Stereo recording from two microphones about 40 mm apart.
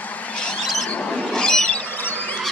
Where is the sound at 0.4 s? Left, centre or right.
Left.